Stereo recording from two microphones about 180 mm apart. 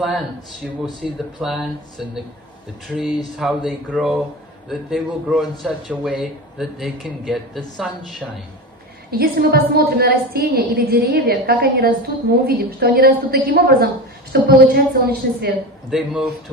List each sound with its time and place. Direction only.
0.0 s a man's voice: centre (ahead or behind)
2.9 s a man's voice: centre (ahead or behind)
9.1 s a woman's voice: 55° right (ahead or behind)
15.9 s a man's voice: 5° right (ahead or behind)